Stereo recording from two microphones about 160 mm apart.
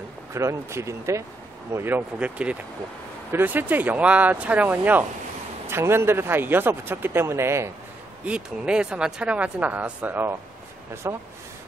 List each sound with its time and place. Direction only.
0.3 s speech: 20° right (ahead or behind)
8.3 s speech: 5° right (ahead or behind)